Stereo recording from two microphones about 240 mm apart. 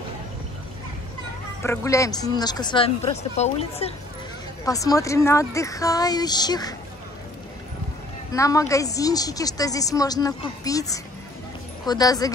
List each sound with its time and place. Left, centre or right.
1.6 s a woman's voice: centre
4.6 s a woman's voice: centre
8.3 s a woman's voice: centre